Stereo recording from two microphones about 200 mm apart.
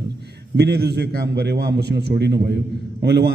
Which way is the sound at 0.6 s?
55° right (ahead or behind).